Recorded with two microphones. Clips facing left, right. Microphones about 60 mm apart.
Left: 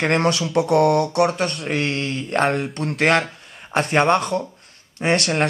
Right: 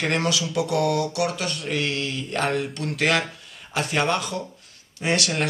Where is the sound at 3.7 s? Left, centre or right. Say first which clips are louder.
Left 6 dB; left.